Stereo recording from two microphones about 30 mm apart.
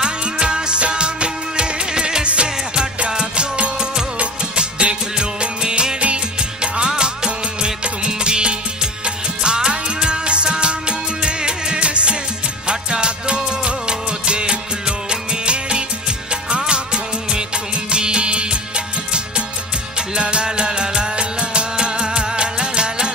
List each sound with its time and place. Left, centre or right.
0.0 s music: right
5.9 s music: right
12.6 s music of bollywood: right
17.9 s music: right
20.2 s music: right